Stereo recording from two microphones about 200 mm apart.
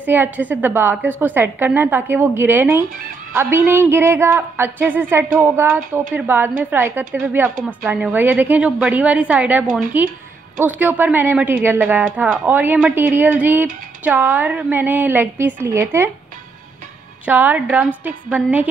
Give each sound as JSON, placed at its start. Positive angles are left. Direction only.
{"t": 0.0, "sound": "a woman's voice", "side_deg": -10}
{"t": 17.3, "sound": "a woman's voice", "side_deg": -10}